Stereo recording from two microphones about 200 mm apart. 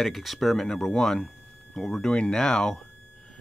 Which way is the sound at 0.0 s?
Centre (ahead or behind).